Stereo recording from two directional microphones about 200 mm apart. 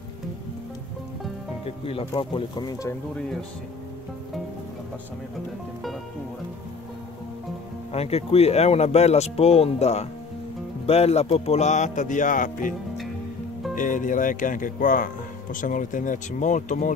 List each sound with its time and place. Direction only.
1.9 s speech: 25° left (ahead or behind)
3.2 s speech: 5° left (ahead or behind)
7.9 s speech: 30° left (ahead or behind)
13.7 s speech: 40° left (ahead or behind)